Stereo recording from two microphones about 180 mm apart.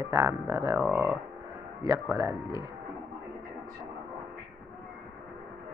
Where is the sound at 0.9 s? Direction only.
Centre (ahead or behind).